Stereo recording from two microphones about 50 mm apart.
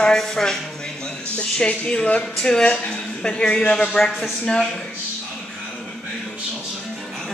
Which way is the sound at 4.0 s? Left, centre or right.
Centre.